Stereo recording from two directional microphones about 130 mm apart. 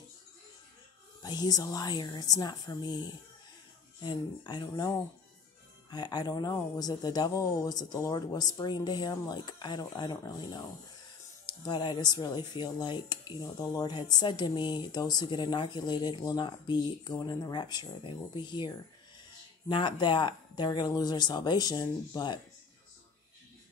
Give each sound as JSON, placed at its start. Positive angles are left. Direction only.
{"t": 1.2, "sound": "speech", "side_deg": 30}
{"t": 19.7, "sound": "speech", "side_deg": 35}